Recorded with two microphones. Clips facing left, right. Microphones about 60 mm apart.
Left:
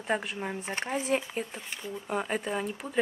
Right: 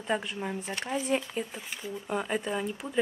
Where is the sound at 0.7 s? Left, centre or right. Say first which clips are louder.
Left 2 dB; left.